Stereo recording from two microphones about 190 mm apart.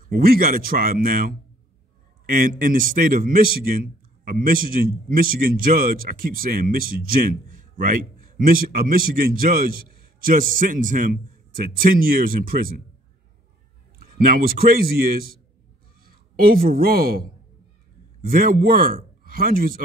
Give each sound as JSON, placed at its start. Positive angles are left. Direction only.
{"t": 0.0, "sound": "a man's voice", "side_deg": -50}
{"t": 13.9, "sound": "a man's voice", "side_deg": -50}
{"t": 16.3, "sound": "a man's voice", "side_deg": -50}